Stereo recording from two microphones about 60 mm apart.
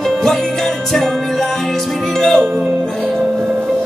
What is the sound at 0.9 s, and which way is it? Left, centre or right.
Music, centre.